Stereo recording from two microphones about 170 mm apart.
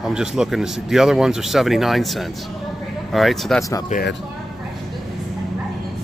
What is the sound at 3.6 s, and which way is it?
Speech, 20° left (ahead or behind).